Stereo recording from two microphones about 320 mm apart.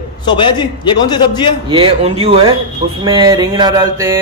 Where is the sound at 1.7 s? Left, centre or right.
Centre.